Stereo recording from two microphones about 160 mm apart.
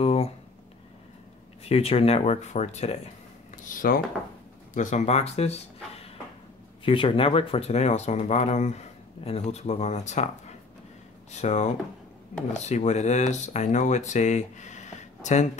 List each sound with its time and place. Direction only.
0.0 s a sound: 40° left (ahead or behind)
1.6 s speech: 40° left (ahead or behind)
3.7 s speech: 60° left (ahead or behind); by 5.6 s 40° left (ahead or behind)
6.8 s speech: 35° left (ahead or behind)
11.3 s speech: 45° left (ahead or behind)